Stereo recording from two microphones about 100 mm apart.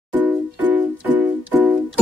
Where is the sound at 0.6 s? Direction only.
15° right (ahead or behind).